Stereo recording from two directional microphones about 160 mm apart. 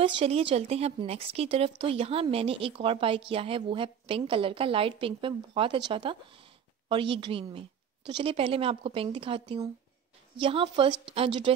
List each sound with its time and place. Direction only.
0.0 s speech: 40° right (ahead or behind)